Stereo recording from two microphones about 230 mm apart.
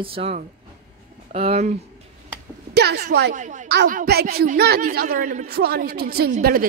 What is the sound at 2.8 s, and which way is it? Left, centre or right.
Speech, right.